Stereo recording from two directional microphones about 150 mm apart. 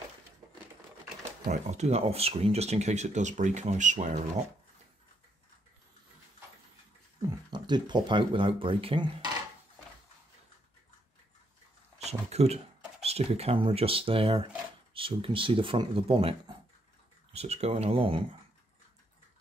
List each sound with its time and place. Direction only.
1.5 s speech: 50° right (ahead or behind)
7.2 s speech: 25° right (ahead or behind)
12.0 s a sound: 45° right (ahead or behind)
13.0 s speech: 45° right (ahead or behind)